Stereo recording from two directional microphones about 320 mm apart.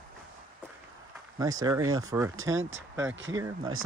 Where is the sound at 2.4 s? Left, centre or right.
Right.